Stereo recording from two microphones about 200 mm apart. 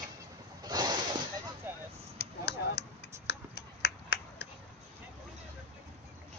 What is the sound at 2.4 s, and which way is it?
Finger snapping, 55° left (ahead or behind).